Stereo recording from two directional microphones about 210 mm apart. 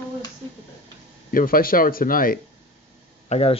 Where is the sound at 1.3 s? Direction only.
45° left (ahead or behind).